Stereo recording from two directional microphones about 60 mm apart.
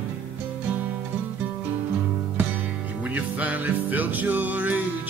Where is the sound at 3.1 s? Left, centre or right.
Right.